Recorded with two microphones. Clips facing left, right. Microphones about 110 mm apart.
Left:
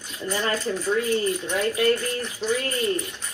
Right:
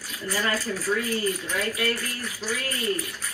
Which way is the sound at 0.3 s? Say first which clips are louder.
Left 2 dB; 25° left (ahead or behind).